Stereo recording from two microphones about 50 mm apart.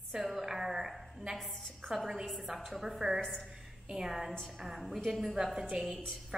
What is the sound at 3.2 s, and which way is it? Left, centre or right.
Speech, centre.